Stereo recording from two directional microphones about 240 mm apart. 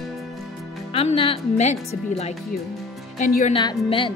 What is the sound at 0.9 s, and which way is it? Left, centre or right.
Speech, left.